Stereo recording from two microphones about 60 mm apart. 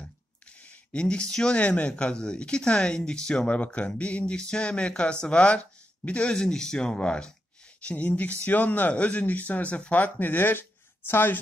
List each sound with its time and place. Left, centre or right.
0.0 s speech: left
3.4 s speech: left